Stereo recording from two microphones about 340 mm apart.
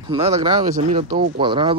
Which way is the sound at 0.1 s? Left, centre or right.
Centre.